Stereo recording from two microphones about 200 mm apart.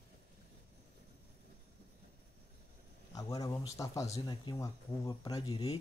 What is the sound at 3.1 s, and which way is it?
Speech, 15° left (ahead or behind).